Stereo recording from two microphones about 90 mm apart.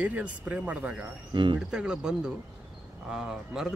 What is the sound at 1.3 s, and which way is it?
Speech, 60° right (ahead or behind).